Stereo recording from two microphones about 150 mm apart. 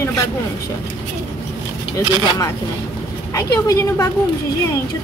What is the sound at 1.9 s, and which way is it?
A woman's voice, 30° left (ahead or behind).